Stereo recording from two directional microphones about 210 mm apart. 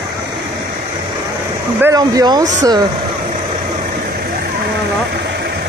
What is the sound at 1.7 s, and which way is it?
Speech, 15° right (ahead or behind).